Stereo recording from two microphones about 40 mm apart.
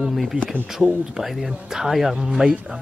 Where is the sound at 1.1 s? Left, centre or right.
Centre.